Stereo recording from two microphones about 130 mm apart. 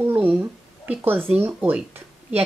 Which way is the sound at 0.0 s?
15° right (ahead or behind).